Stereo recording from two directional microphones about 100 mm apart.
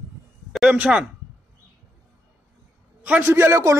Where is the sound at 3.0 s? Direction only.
20° right (ahead or behind).